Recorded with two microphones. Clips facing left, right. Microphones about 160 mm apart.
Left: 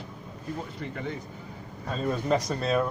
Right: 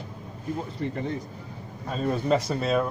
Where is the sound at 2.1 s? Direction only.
5° right (ahead or behind).